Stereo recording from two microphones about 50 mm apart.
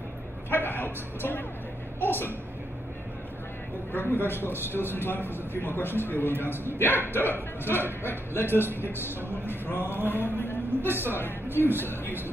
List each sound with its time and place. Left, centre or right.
0.5 s a sound: left
2.0 s a woman's voice: left
3.9 s a man's voice: left
10.9 s speech: right
11.8 s a man's voice: left